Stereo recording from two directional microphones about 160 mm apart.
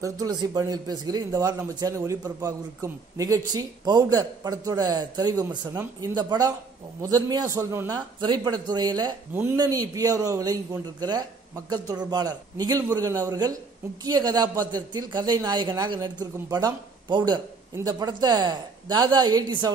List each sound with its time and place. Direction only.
0.0 s a woman's voice: 25° right (ahead or behind)